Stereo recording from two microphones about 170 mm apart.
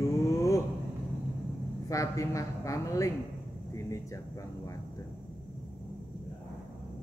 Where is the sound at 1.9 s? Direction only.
20° left (ahead or behind).